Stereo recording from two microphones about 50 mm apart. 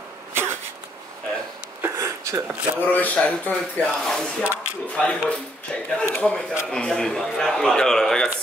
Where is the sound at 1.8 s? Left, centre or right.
Right.